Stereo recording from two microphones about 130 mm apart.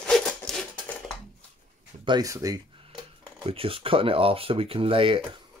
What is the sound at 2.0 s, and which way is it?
Speech, 30° right (ahead or behind).